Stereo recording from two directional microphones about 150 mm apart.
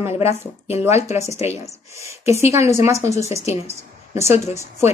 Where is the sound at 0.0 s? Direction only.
15° right (ahead or behind).